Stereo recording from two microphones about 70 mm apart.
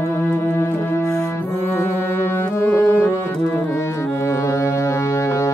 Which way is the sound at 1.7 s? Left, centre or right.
Left.